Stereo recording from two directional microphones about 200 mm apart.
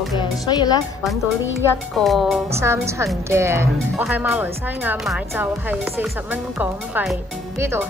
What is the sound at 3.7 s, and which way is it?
Speech, centre (ahead or behind).